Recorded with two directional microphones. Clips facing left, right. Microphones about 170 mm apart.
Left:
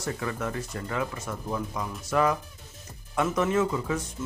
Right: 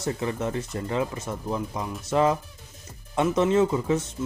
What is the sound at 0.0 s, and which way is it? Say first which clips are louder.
Speech: right 4 dB; 25° right (ahead or behind).